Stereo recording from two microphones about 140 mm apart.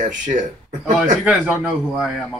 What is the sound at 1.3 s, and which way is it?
Speech, 10° right (ahead or behind).